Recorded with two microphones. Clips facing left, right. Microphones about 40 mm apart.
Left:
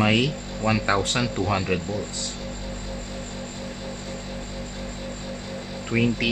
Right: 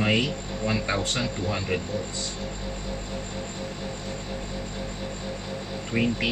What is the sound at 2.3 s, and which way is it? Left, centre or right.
Music, centre.